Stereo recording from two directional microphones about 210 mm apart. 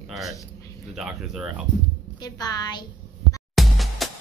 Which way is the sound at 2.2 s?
20° left (ahead or behind).